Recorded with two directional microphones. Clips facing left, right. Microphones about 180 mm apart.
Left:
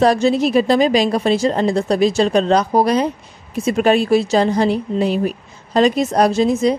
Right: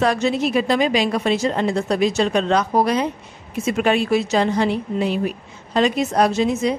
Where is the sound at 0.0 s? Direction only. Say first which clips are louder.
Left 5 dB; 35° left (ahead or behind).